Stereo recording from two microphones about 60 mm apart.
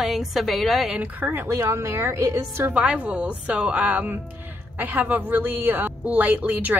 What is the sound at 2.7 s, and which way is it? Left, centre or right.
A woman's voice, centre.